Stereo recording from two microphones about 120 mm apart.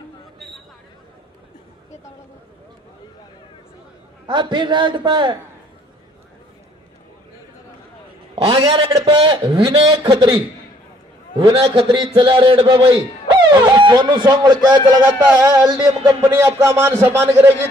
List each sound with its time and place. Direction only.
4.3 s a man's voice: 40° right (ahead or behind)
8.4 s a man's voice: 45° right (ahead or behind); by 17.6 s 20° right (ahead or behind)